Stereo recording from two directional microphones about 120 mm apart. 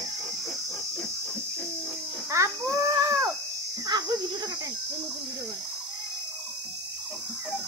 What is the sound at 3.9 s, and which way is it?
Insect, 35° right (ahead or behind).